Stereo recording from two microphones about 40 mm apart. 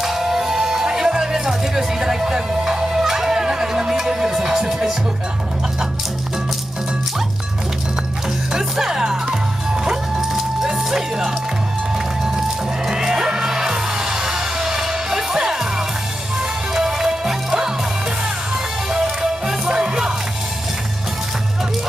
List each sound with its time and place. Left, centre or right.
0.0 s music: centre
8.5 s music: centre
12.8 s music: centre
16.7 s music: centre
18.9 s music: centre